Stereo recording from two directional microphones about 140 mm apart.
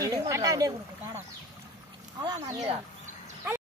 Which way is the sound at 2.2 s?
25° right (ahead or behind).